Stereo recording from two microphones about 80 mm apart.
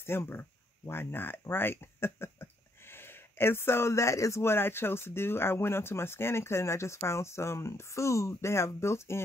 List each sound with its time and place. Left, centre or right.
0.0 s speech: left